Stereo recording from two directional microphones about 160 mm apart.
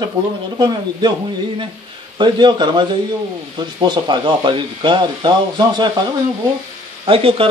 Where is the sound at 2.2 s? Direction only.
30° right (ahead or behind).